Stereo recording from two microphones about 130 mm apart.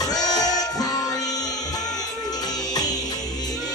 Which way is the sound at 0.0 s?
30° left (ahead or behind).